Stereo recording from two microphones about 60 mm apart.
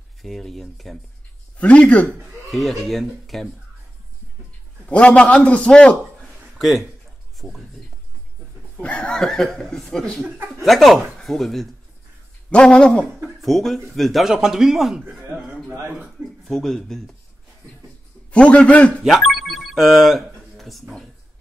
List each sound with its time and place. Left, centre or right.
0.2 s speech: centre
1.6 s a man's voice: left
2.5 s speech: centre
4.8 s a man's voice: left
6.6 s speech: centre
8.8 s speech: centre
12.4 s speech: centre
13.4 s speech: centre
16.4 s speech: centre
18.3 s a man's voice: centre
19.0 s telephone bell ringing: centre